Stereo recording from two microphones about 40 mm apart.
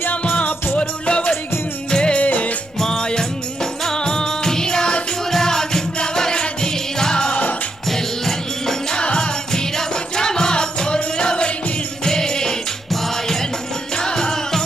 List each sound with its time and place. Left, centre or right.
0.1 s music: left
2.2 s music: left
2.8 s music: centre
8.9 s music: left